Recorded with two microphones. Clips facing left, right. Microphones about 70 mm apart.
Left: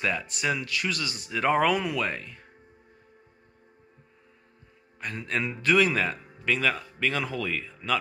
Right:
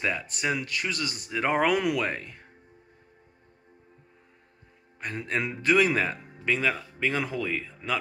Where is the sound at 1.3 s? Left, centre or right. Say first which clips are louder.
Left 1 dB; right.